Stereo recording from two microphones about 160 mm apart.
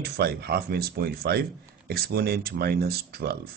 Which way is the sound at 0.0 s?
75° right (ahead or behind).